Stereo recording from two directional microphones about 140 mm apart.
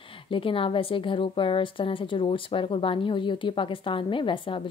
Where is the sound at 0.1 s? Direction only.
40° left (ahead or behind).